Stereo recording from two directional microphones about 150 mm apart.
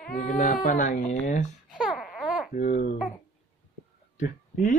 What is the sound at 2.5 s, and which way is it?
Speech, 60° left (ahead or behind).